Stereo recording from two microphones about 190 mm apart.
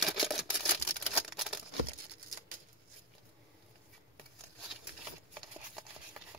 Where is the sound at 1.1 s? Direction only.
Centre (ahead or behind).